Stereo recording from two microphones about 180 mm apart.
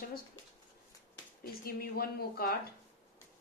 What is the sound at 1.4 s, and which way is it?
A woman's voice, 55° left (ahead or behind).